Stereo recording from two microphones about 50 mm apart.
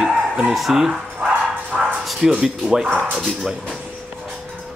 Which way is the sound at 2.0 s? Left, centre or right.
Centre.